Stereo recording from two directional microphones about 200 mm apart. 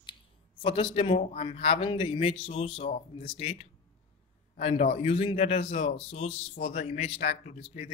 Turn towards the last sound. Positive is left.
turn(degrees=30)  # may be behind; listen again after turning